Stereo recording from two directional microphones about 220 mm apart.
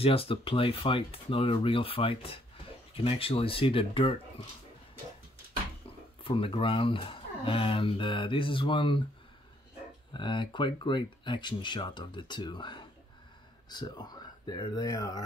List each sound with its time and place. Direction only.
0.0 s speech: 25° left (ahead or behind)
6.2 s speech: 25° left (ahead or behind)
10.1 s speech: 20° left (ahead or behind)